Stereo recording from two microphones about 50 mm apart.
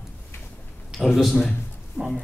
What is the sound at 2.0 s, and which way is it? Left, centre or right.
Speech, left.